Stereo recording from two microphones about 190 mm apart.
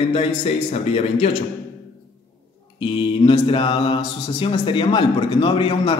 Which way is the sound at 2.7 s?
25° left (ahead or behind).